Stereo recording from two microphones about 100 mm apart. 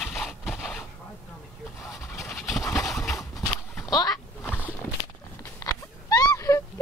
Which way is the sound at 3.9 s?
40° left (ahead or behind).